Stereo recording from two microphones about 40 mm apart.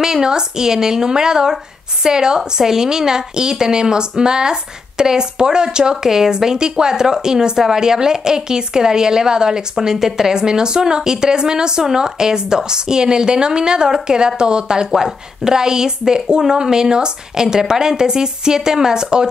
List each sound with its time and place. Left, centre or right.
0.0 s speech: centre